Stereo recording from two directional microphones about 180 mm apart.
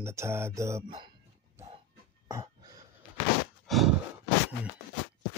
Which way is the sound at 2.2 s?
15° right (ahead or behind).